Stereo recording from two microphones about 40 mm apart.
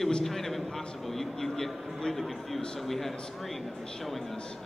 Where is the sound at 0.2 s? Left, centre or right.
Centre.